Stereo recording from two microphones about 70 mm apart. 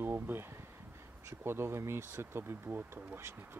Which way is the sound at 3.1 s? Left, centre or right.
Right.